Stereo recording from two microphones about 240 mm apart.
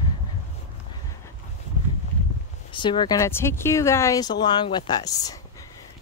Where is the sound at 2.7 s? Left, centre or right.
Centre.